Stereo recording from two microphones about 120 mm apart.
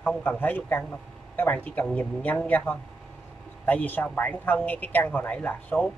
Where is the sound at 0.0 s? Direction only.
15° left (ahead or behind).